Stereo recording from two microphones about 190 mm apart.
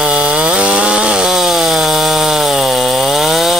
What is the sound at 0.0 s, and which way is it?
Chainsaw, 5° right (ahead or behind).